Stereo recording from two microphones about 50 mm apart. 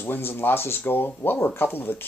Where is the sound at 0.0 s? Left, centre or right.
Left.